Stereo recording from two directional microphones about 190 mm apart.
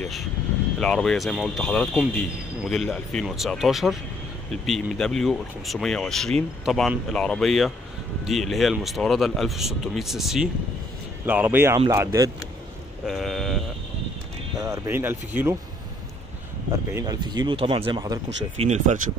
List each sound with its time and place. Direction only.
0.7 s speech: 5° left (ahead or behind); by 12.3 s 15° right (ahead or behind)
13.0 s sheep: centre (ahead or behind)
14.6 s speech: 15° right (ahead or behind)
16.9 s speech: 20° right (ahead or behind)
18.6 s speech: 35° right (ahead or behind)